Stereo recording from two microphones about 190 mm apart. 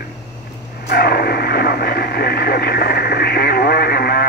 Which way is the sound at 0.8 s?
55° left (ahead or behind).